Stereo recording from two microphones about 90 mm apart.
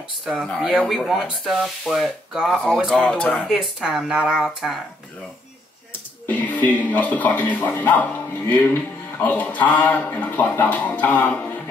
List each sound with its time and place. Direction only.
0.2 s speech: centre (ahead or behind)
0.5 s a man's voice: 10° left (ahead or behind)
0.7 s speech: centre (ahead or behind)
2.9 s a man's voice: 15° left (ahead or behind)
3.4 s speech: 5° right (ahead or behind)
6.2 s a man's voice: 20° left (ahead or behind)